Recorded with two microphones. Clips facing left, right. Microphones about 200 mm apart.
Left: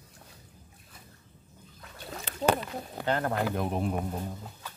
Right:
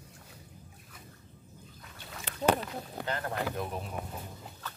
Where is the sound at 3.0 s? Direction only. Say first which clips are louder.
Left 6 dB; 55° left (ahead or behind).